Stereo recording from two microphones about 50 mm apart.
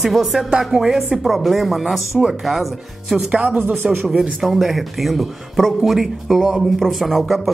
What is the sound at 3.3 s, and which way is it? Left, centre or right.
Speech, right.